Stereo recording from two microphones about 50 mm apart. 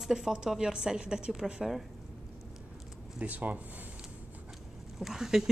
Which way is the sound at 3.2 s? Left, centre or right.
Right.